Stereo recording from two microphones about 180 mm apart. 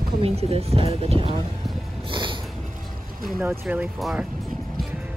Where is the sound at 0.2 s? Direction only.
35° right (ahead or behind).